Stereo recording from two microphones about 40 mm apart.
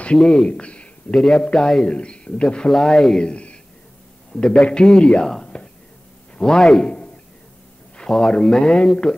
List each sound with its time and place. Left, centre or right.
0.2 s speech: centre
0.5 s a man's voice: left
1.1 s speech: centre
1.9 s speech: left
2.7 s speech: centre
3.2 s speech: left
5.5 s whispering: left
6.3 s a man's voice: centre
8.1 s speech: centre